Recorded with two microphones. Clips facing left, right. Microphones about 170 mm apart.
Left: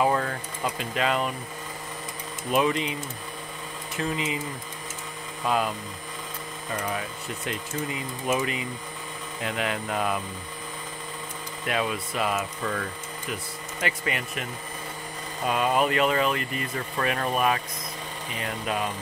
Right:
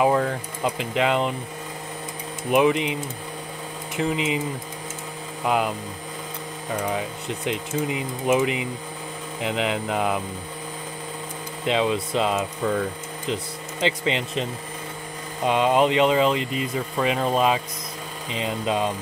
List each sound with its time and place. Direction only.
0.0 s speech: 5° right (ahead or behind)
0.7 s speech: 20° right (ahead or behind)
2.5 s speech: 15° right (ahead or behind)
5.4 s speech: 20° right (ahead or behind)
6.9 s speech: 20° right (ahead or behind)
11.6 s speech: 20° right (ahead or behind)
12.6 s speech: 10° right (ahead or behind)
13.3 s speech: 25° right (ahead or behind)